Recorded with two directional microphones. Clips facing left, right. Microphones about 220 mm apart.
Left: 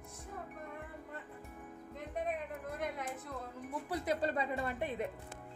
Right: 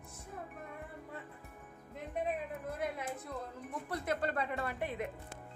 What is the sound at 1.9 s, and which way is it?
Music, 5° right (ahead or behind).